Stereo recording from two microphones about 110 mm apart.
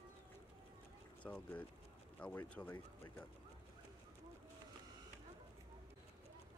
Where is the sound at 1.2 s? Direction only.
15° left (ahead or behind).